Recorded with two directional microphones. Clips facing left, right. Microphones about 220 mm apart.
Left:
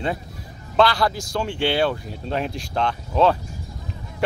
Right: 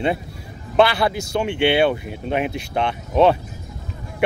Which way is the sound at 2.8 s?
20° right (ahead or behind).